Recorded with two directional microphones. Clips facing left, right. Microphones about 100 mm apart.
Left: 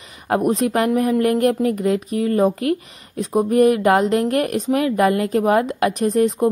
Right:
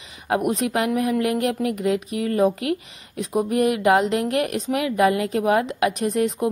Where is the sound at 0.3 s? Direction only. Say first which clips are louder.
Left 4 dB; 35° left (ahead or behind).